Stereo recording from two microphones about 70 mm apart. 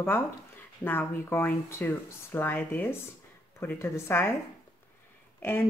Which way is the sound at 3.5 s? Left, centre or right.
Left.